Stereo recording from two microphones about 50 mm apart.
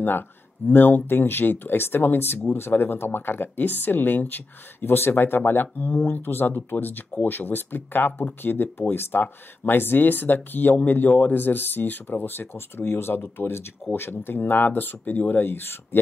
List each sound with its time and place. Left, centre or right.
0.7 s speech: left